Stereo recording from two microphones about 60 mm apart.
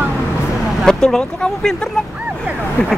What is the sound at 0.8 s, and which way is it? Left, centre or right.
Speech, centre.